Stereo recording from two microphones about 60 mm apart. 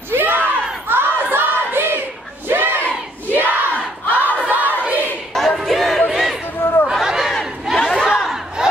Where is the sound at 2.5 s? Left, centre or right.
Right.